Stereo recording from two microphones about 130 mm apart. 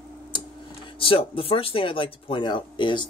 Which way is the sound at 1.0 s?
45° left (ahead or behind).